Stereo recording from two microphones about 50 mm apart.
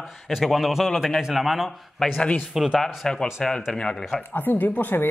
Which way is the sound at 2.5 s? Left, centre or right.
Centre.